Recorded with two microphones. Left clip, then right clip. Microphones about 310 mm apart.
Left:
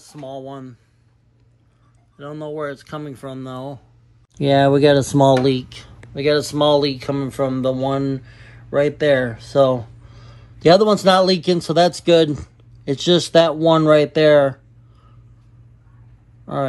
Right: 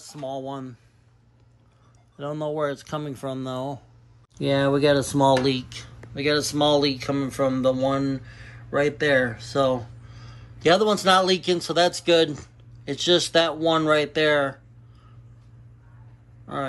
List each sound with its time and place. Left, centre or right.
0.0 s speech: centre
2.1 s speech: centre
4.5 s speech: centre
5.4 s speech: centre